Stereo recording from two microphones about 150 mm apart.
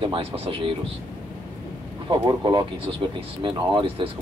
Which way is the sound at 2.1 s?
35° right (ahead or behind).